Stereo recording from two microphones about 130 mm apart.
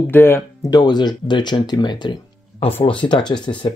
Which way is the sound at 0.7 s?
35° left (ahead or behind).